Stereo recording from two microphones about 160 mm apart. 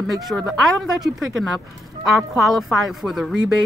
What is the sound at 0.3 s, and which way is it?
Speech, centre (ahead or behind).